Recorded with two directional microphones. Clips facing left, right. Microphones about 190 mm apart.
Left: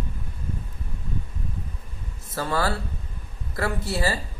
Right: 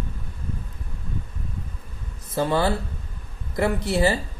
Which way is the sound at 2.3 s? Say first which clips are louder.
Right 4 dB; 20° right (ahead or behind).